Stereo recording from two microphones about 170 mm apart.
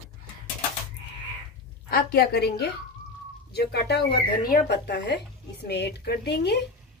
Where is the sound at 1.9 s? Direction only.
60° left (ahead or behind); by 6.6 s 80° left.